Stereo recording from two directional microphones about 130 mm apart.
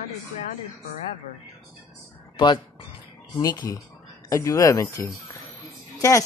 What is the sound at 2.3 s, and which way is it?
Speech, 35° left (ahead or behind).